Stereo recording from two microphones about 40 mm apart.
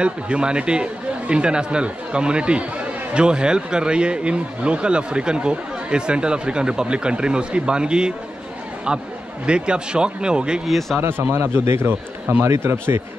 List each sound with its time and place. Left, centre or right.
0.0 s speech: right
9.5 s speech: right
10.7 s speech: centre
11.0 s speech: right
11.3 s speech: right